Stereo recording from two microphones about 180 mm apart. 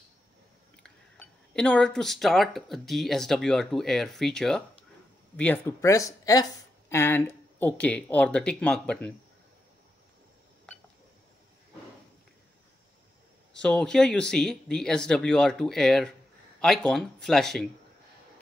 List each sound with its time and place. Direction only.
0.8 s speech: 5° left (ahead or behind)
13.5 s speech: 5° left (ahead or behind)